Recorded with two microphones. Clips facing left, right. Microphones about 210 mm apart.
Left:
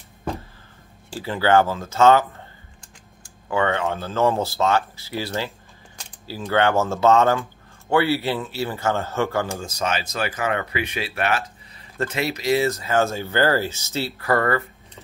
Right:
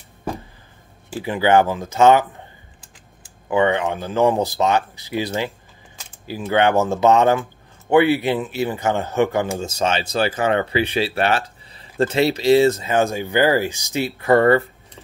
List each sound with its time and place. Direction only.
1.2 s speech: 15° right (ahead or behind)
3.4 s speech: 15° right (ahead or behind)